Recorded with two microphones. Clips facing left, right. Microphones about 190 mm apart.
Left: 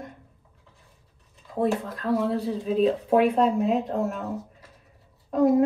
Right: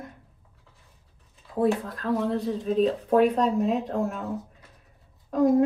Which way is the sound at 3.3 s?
Centre (ahead or behind).